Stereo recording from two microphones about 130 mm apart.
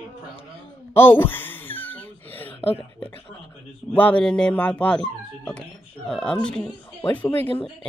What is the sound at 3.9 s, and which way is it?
Speech, 10° left (ahead or behind).